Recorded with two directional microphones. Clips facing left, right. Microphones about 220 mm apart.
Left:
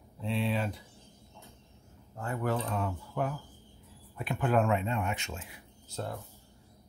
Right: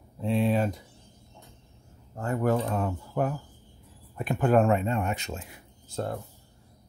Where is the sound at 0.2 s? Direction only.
45° right (ahead or behind).